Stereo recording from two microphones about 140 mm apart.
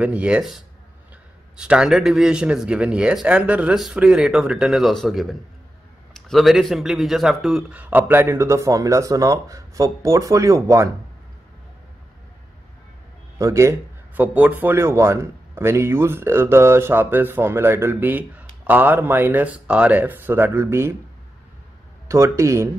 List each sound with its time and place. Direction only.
0.0 s a man's voice: 10° right (ahead or behind)
1.6 s a man's voice: 5° right (ahead or behind); by 10.9 s 20° right (ahead or behind)
13.4 s a man's voice: 20° right (ahead or behind)
22.0 s a man's voice: 20° right (ahead or behind)